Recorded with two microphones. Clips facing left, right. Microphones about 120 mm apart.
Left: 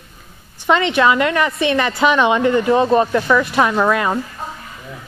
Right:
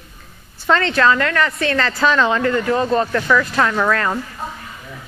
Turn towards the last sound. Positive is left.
turn(degrees=15)  # may be behind; listen again after turning